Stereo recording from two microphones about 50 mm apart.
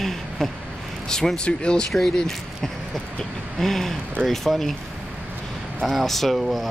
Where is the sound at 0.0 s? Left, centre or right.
Centre.